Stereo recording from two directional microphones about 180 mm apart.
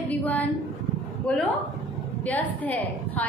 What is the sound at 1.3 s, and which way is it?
A woman's voice, 5° left (ahead or behind).